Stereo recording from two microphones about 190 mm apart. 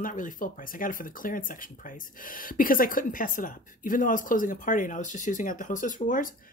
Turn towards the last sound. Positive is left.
turn(degrees=45)  # may be behind; listen again after turning